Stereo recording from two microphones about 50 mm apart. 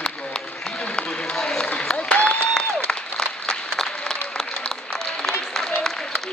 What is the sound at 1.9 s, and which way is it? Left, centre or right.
Applause, left.